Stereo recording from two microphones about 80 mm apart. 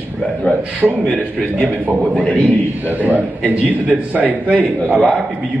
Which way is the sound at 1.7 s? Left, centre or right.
Right.